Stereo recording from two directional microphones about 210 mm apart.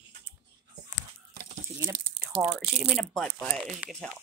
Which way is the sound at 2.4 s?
Centre (ahead or behind).